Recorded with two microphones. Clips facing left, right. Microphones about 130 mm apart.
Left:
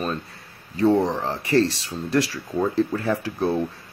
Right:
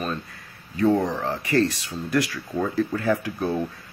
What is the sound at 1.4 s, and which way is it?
Speech, 30° left (ahead or behind).